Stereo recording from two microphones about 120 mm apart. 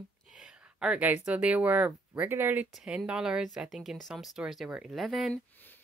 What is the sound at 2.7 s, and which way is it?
Speech, 5° right (ahead or behind).